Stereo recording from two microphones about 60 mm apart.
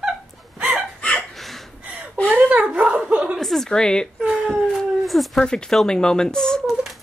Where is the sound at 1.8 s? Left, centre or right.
Right.